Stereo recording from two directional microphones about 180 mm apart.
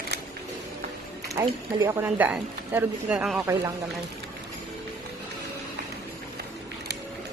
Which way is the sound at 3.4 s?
20° right (ahead or behind).